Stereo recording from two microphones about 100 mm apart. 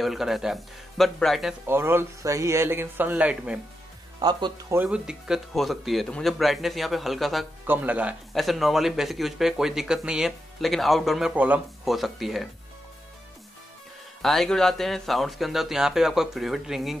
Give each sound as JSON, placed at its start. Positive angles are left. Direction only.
{"t": 0.0, "sound": "speech", "side_deg": -5}
{"t": 1.7, "sound": "a man's voice", "side_deg": -25}
{"t": 4.2, "sound": "speech", "side_deg": -45}
{"t": 4.8, "sound": "speech", "side_deg": -5}
{"t": 7.6, "sound": "speech", "side_deg": -15}
{"t": 8.4, "sound": "speech", "side_deg": 0}
{"t": 11.3, "sound": "speech", "side_deg": -15}
{"t": 11.8, "sound": "speech", "side_deg": 0}
{"t": 14.2, "sound": "speech", "side_deg": 0}